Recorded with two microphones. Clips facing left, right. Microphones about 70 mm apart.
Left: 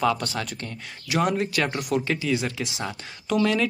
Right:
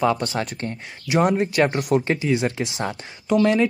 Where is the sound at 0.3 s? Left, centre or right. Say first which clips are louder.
Right 5 dB; right.